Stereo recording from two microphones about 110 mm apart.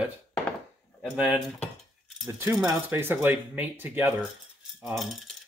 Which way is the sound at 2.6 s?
20° right (ahead or behind).